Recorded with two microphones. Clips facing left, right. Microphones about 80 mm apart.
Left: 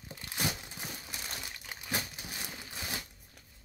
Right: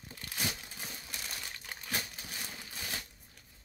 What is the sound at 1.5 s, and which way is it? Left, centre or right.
Crumpling, centre.